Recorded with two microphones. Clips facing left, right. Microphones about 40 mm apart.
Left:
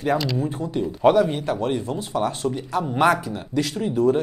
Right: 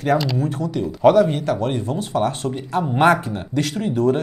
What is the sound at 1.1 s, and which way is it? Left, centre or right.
Speech, right.